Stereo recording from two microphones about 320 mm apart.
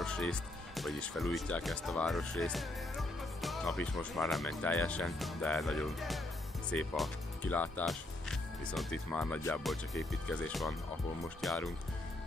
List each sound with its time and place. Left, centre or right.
0.0 s speech: centre